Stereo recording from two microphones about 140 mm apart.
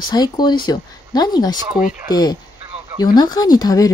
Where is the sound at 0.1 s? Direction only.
30° left (ahead or behind).